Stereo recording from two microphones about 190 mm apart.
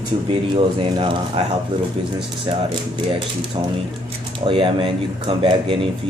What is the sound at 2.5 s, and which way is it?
Speech, 25° right (ahead or behind).